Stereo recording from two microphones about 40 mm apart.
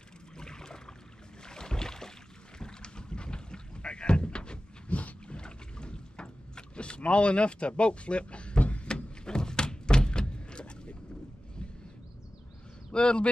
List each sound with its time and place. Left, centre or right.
0.4 s boat: centre; by 5.4 s left
5.4 s rowboat: left
8.8 s a sound: left
12.9 s speech: left